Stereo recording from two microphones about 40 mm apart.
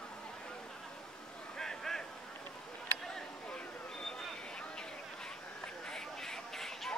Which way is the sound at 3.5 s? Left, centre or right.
Centre.